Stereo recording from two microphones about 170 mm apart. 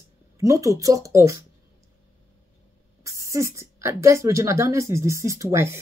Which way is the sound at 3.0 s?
20° right (ahead or behind).